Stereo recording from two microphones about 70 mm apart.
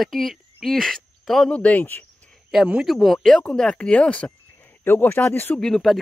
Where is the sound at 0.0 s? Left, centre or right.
Centre.